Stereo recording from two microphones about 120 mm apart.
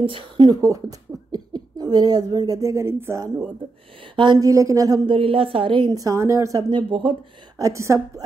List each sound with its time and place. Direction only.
0.0 s a woman's voice: 40° right (ahead or behind); by 3.3 s 20° right (ahead or behind)
4.1 s a woman's voice: 40° right (ahead or behind)
4.5 s a woman's voice: 25° right (ahead or behind)
5.1 s a woman's voice: 50° right (ahead or behind)
5.9 s a woman's voice: 30° right (ahead or behind)
6.7 s a woman's voice: 45° right (ahead or behind)
7.5 s a woman's voice: 25° right (ahead or behind)